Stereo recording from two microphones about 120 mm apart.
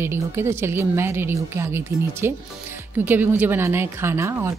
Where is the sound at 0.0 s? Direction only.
20° right (ahead or behind).